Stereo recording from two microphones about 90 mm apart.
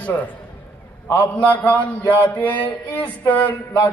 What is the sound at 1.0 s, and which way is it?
A man's voice, 20° left (ahead or behind).